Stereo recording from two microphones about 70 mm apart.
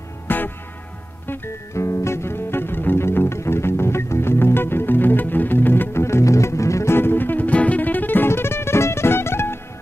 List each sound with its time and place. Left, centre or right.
0.3 s music: left